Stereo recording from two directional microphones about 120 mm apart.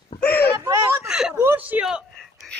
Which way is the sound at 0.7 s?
30° right (ahead or behind).